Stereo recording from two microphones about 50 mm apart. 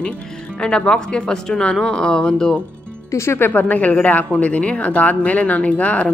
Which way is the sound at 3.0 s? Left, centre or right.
Left.